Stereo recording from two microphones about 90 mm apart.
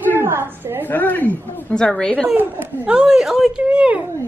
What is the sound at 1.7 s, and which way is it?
Speech, 10° left (ahead or behind).